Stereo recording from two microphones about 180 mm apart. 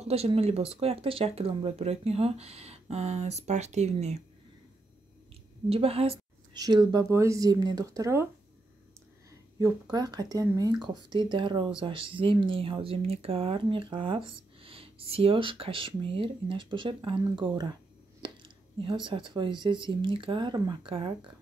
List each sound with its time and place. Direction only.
0.0 s speech: 35° right (ahead or behind)
5.7 s a woman's voice: 35° right (ahead or behind)
6.6 s speech: 20° right (ahead or behind)
9.6 s speech: 20° right (ahead or behind)
18.2 s a sound: 30° right (ahead or behind)
19.0 s speech: 25° right (ahead or behind)